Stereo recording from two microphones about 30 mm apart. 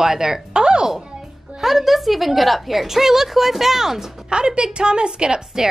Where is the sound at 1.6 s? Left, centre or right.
Centre.